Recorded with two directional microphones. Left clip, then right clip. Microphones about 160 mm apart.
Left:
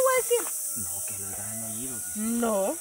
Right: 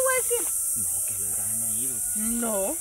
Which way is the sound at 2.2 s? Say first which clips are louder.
Left 2 dB; 15° left (ahead or behind).